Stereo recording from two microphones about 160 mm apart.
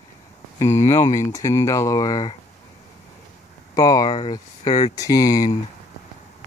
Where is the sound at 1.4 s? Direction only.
20° left (ahead or behind).